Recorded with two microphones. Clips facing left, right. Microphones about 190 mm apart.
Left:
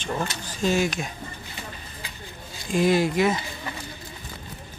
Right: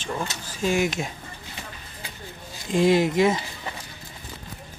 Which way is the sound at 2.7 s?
25° right (ahead or behind).